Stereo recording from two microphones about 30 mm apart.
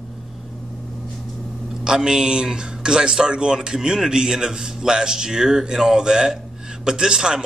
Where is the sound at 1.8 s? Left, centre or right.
Right.